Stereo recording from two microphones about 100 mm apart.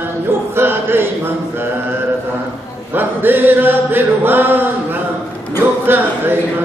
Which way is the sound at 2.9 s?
20° right (ahead or behind).